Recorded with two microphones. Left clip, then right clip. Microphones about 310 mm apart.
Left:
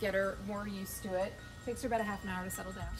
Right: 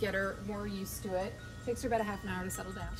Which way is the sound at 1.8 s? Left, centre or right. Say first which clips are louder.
Even; centre.